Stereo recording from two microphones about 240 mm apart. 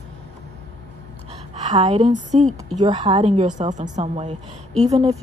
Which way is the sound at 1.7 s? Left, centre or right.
Centre.